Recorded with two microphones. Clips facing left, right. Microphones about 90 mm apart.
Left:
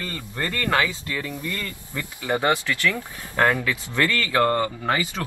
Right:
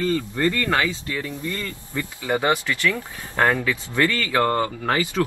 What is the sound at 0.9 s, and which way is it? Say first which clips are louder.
Speech: right 1 dB; 20° right (ahead or behind).